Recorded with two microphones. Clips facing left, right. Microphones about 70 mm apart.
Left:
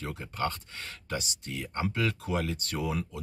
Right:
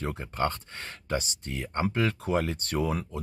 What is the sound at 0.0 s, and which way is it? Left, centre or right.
Speech, right.